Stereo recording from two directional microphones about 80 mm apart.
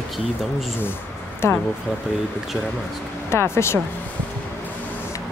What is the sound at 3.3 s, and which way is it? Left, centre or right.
Speech, left.